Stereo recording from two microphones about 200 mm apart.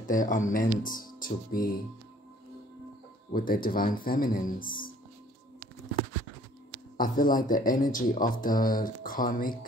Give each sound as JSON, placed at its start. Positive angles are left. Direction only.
{"t": 0.0, "sound": "speech", "side_deg": 40}
{"t": 3.3, "sound": "speech", "side_deg": 45}
{"t": 7.0, "sound": "speech", "side_deg": 45}